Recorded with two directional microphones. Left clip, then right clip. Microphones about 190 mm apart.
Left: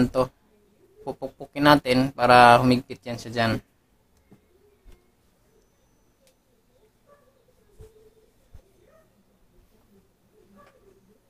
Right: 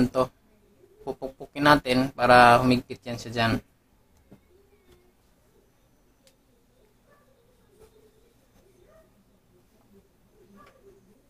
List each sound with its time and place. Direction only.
0.0 s speech: 20° left (ahead or behind)